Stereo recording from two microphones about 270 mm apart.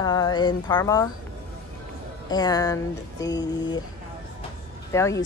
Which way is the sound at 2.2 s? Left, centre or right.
Centre.